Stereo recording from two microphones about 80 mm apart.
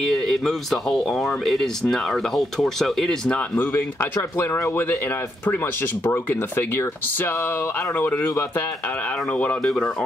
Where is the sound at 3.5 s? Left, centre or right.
Left.